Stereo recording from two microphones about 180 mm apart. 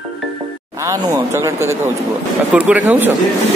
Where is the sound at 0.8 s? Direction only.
20° right (ahead or behind).